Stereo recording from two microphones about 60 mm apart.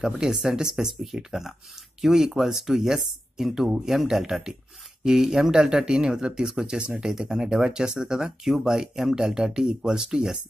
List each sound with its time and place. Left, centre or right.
0.0 s speech: centre
6.8 s speech: centre
7.1 s speech: centre